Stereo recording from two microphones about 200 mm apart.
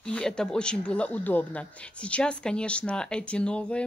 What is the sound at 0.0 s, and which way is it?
Speech, 5° left (ahead or behind).